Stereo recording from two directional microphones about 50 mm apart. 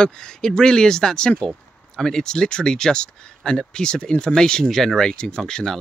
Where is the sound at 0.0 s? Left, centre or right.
Centre.